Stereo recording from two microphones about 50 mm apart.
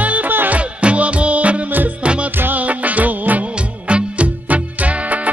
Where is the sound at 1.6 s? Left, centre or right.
Right.